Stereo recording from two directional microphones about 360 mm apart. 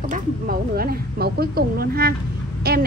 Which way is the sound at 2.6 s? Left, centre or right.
Right.